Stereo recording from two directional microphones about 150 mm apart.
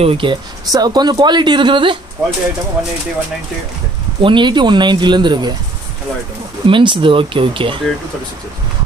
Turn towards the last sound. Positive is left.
turn(degrees=-35)  # may be behind; listen again after turning